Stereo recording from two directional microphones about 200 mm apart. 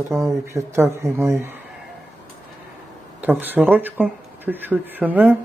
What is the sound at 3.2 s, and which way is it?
Speech, 10° right (ahead or behind).